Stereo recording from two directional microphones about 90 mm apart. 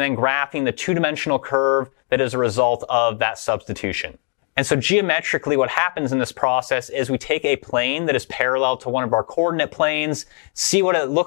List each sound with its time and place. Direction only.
0.2 s speech: centre (ahead or behind)
1.5 s speech: 25° left (ahead or behind)
2.0 s speech: 5° right (ahead or behind)
9.0 s speech: 20° left (ahead or behind)
9.6 s speech: 5° right (ahead or behind)